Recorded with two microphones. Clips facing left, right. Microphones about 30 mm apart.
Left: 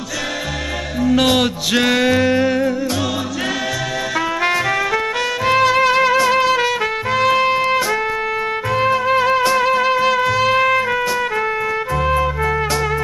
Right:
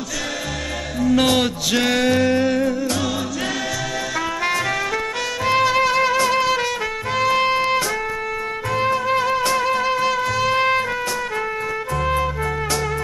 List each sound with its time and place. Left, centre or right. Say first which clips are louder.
1.0 s music: left 2 dB; centre
4.4 s music: left 4 dB; centre
7.3 s music: left 3 dB; centre
8.7 s music: left 3 dB; centre
12.0 s music: left 3 dB; centre